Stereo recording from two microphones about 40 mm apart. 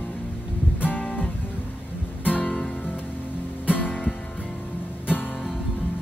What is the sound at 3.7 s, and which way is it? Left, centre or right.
Music, left.